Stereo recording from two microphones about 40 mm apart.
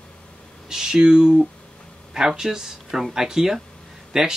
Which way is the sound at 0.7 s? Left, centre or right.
Centre.